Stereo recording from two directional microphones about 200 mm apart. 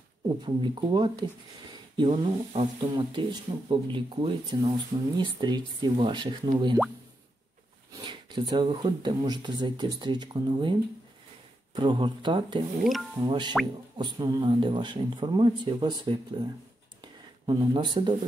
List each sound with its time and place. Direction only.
0.3 s speech: 20° right (ahead or behind)
8.0 s speech: 20° right (ahead or behind)
17.0 s a sound: 20° right (ahead or behind)